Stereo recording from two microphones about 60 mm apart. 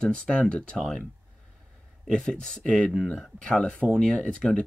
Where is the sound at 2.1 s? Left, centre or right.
Centre.